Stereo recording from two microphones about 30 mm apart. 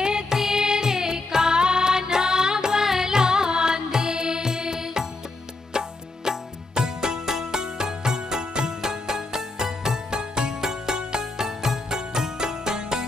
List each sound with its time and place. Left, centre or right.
0.0 s music: right